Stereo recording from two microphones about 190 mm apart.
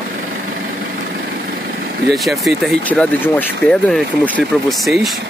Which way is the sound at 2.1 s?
Centre (ahead or behind).